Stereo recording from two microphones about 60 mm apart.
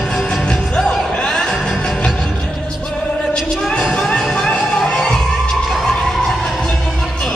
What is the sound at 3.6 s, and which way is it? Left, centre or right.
Music, centre.